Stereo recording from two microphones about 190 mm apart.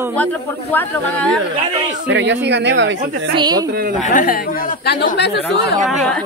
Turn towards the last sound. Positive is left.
turn(degrees=60)  # may be behind; listen again after turning